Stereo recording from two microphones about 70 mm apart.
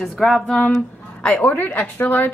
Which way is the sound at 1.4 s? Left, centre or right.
Left.